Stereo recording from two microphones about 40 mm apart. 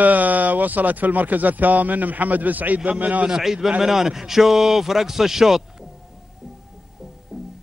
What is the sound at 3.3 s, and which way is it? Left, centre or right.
A man's voice, centre.